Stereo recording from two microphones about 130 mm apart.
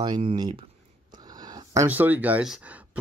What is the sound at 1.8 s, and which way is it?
Speech, 15° right (ahead or behind).